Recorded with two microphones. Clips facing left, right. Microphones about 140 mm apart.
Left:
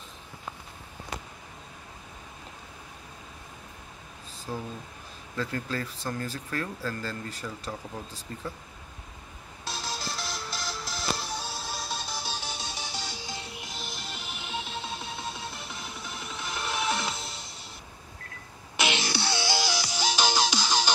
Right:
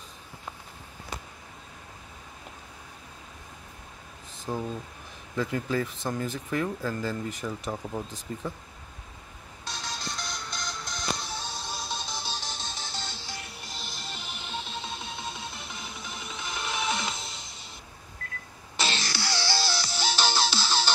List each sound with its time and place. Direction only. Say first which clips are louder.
4.5 s speech: right 4 dB; 10° right (ahead or behind)
9.7 s music: left 2 dB; 5° left (ahead or behind)
13.7 s music: right 1 dB; centre (ahead or behind)
18.8 s music: left 3 dB; 20° left (ahead or behind)